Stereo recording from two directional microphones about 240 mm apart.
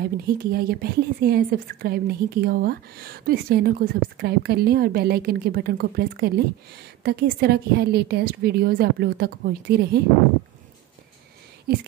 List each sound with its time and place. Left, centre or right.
0.0 s a woman's voice: right